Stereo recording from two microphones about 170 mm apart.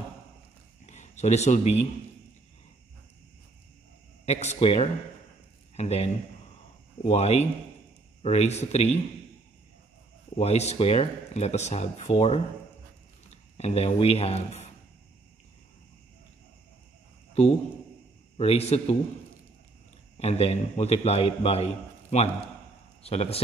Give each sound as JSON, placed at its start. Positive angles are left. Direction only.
{"t": 0.8, "sound": "speech", "side_deg": 45}
{"t": 4.3, "sound": "a man's voice", "side_deg": 40}
{"t": 10.3, "sound": "a man's voice", "side_deg": 40}
{"t": 18.4, "sound": "a man's voice", "side_deg": 35}
{"t": 20.2, "sound": "a man's voice", "side_deg": 35}